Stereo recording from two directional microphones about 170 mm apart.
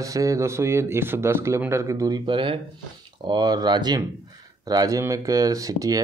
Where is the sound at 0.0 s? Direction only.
20° right (ahead or behind).